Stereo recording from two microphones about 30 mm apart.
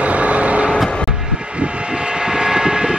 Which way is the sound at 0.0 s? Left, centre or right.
Right.